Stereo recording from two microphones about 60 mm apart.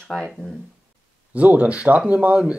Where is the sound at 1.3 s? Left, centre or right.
Right.